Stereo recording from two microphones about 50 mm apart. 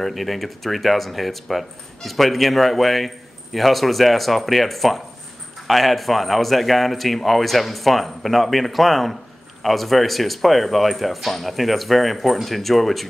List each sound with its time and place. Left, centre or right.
0.0 s speech: centre